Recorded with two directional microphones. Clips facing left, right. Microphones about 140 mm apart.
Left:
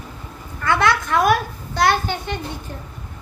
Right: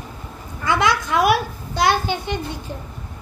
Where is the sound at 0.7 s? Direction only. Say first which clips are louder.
Left 1 dB; 15° right (ahead or behind).